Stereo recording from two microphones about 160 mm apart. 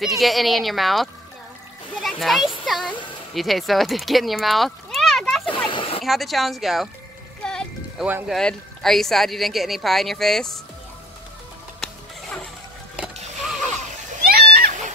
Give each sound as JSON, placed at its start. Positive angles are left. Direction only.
{"t": 0.2, "sound": "speech", "side_deg": 0}
{"t": 2.0, "sound": "splash", "side_deg": 0}
{"t": 2.6, "sound": "speech", "side_deg": 0}
{"t": 5.7, "sound": "a sound", "side_deg": 35}
{"t": 6.0, "sound": "speech", "side_deg": 0}
{"t": 7.4, "sound": "music", "side_deg": 5}
{"t": 8.0, "sound": "speech", "side_deg": -5}
{"t": 11.8, "sound": "a sound", "side_deg": 5}
{"t": 14.2, "sound": "splash", "side_deg": -70}